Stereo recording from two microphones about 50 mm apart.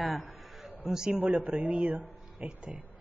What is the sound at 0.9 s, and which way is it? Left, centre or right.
Speech, centre.